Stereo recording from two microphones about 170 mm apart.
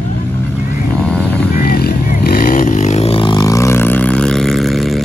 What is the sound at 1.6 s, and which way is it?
Vehicle, 60° left (ahead or behind).